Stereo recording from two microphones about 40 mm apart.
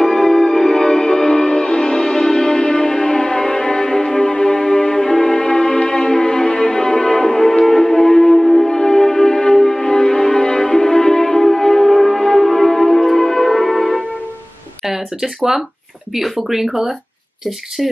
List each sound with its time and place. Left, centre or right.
0.0 s music: centre
10.8 s music: centre
16.2 s speech: centre